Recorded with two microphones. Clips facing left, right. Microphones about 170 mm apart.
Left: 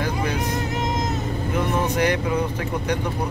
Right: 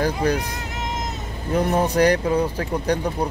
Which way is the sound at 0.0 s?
35° right (ahead or behind).